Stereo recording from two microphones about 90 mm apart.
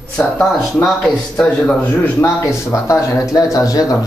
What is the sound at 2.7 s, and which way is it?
Speech, 35° left (ahead or behind).